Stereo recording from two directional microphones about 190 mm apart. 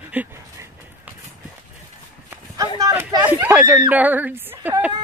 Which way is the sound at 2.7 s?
20° right (ahead or behind).